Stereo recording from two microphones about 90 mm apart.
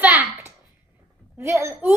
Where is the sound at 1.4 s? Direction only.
30° right (ahead or behind).